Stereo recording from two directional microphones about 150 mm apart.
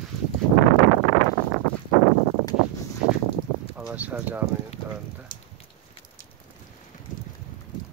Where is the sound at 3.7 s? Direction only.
10° right (ahead or behind).